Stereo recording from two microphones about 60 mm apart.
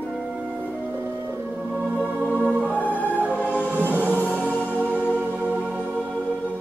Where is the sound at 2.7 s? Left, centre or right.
Left.